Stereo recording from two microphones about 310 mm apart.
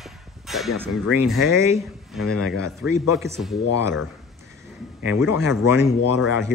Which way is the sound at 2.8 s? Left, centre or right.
Left.